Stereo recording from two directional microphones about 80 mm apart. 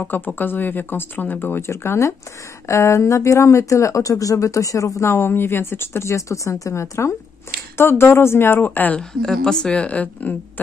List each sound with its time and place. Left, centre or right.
0.0 s speech: left
9.2 s a woman's voice: centre